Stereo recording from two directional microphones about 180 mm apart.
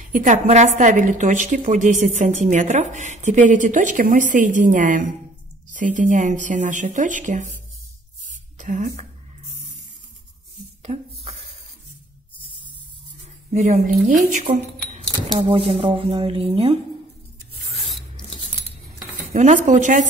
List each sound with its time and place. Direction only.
0.0 s a woman's voice: 45° right (ahead or behind)
8.5 s speech: 45° right (ahead or behind)
10.8 s a sound: 35° right (ahead or behind)
13.5 s speech: 40° right (ahead or behind)
15.3 s speech: 30° right (ahead or behind)
17.7 s filing: centre (ahead or behind)
19.3 s a woman's voice: 45° right (ahead or behind)